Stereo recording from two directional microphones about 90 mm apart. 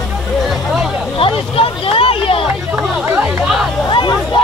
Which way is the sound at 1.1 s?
90° left.